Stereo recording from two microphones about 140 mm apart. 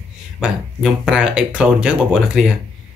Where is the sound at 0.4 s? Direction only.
5° right (ahead or behind).